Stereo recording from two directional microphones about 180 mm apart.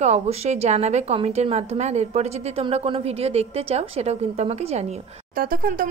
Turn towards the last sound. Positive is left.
turn(degrees=-50)  # may be behind; listen again after turning